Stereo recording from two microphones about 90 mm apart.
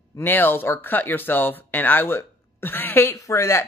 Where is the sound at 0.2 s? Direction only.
20° left (ahead or behind).